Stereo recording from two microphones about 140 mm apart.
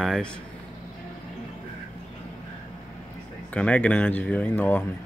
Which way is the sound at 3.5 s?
10° left (ahead or behind).